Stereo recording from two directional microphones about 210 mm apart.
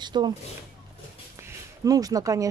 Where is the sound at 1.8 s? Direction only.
15° right (ahead or behind).